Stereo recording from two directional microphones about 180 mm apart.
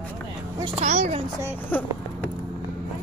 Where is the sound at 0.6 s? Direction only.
40° right (ahead or behind).